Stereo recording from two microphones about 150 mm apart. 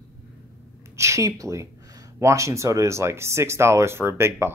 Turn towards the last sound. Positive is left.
turn(degrees=-15)  # may be behind; listen again after turning